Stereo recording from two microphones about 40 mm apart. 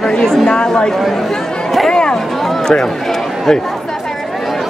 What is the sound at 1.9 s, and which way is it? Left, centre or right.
Speech, left.